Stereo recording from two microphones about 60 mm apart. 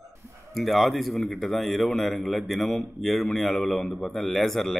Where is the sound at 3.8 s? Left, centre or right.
Left.